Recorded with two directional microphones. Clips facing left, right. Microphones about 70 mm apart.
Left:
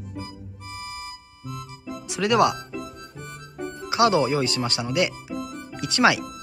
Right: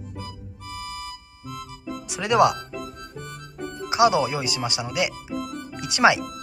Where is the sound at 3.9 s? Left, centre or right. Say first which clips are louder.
Even; centre.